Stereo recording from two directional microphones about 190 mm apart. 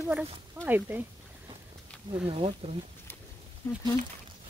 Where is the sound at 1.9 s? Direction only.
5° left (ahead or behind).